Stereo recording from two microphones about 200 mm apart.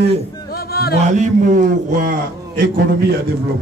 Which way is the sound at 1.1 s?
40° right (ahead or behind).